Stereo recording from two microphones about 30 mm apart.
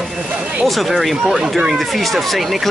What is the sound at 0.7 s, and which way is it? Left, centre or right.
Speech, centre.